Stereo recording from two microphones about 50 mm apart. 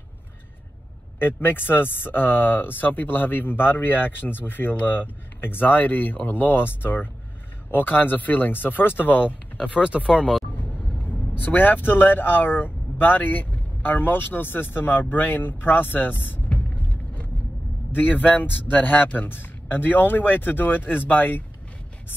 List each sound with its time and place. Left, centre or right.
1.2 s speech: left
9.6 s speech: centre
11.3 s speech: left